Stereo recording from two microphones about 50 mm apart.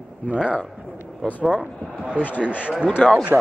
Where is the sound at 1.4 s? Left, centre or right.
Centre.